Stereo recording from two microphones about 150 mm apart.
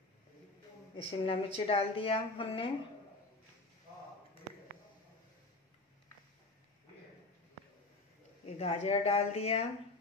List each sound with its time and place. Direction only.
0.9 s a woman's voice: 40° left (ahead or behind)
8.5 s a woman's voice: 45° left (ahead or behind)